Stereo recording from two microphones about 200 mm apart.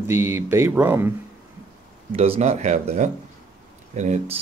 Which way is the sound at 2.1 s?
30° right (ahead or behind).